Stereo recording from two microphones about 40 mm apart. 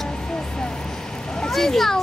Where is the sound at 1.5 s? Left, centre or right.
Centre.